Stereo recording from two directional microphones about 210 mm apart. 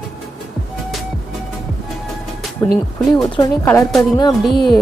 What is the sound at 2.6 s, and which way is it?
Speech, 15° left (ahead or behind).